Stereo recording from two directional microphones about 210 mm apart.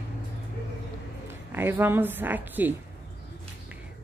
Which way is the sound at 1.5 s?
10° right (ahead or behind).